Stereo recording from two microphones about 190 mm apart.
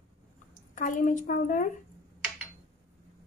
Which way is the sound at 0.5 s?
45° left (ahead or behind).